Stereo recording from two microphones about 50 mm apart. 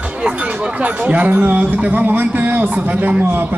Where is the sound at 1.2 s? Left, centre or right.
Right.